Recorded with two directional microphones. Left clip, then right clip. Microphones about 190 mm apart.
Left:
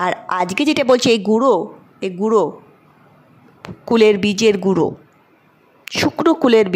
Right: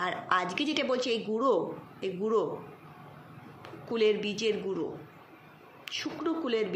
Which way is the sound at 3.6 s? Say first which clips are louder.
Left 15 dB; 65° left (ahead or behind).